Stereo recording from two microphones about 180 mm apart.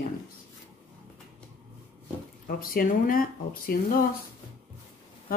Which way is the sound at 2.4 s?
50° left (ahead or behind).